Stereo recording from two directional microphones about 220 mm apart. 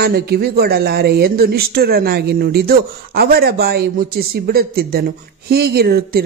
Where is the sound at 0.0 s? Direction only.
45° right (ahead or behind).